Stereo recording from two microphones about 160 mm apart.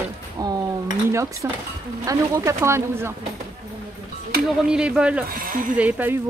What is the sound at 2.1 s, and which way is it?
Speech, 20° right (ahead or behind).